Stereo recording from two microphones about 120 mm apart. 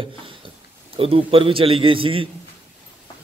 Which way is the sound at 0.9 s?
50° right (ahead or behind).